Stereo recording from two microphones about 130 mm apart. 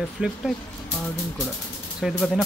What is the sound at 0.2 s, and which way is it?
Speech, 5° right (ahead or behind).